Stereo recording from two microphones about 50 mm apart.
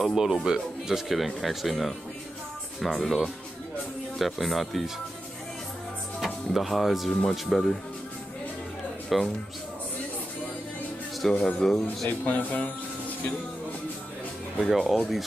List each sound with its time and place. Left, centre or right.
0.0 s speech: centre
6.1 s music: centre
7.2 s speech: centre
9.1 s speech: centre
11.3 s speech: left
11.6 s speech: centre
12.1 s speech: left
14.6 s speech: centre